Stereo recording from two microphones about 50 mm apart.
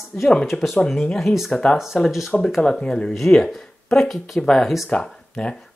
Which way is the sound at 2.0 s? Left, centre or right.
Centre.